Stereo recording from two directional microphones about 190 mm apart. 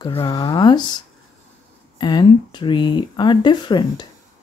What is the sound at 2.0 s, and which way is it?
Speech, 25° left (ahead or behind).